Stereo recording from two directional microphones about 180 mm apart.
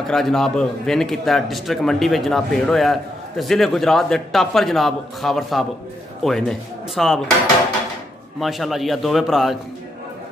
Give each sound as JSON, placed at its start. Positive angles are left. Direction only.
{"t": 0.0, "sound": "speech", "side_deg": 0}
{"t": 8.4, "sound": "speech", "side_deg": 0}